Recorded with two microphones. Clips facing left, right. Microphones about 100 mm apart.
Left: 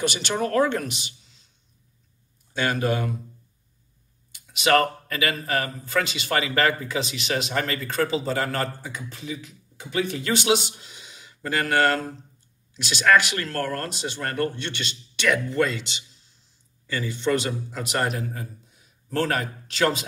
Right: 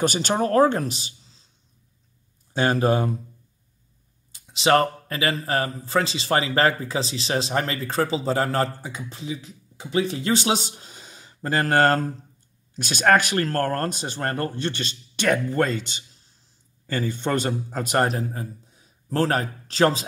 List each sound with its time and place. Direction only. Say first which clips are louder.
0.0 s speech: right 3 dB; 40° right (ahead or behind)
2.5 s a man's voice: right 4 dB; 35° right (ahead or behind)
4.3 s a man's voice: right 1 dB; 30° right (ahead or behind)